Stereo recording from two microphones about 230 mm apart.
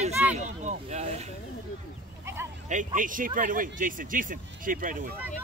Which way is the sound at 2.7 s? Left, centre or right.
Right.